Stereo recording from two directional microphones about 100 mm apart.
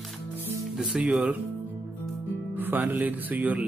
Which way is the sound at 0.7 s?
5° right (ahead or behind).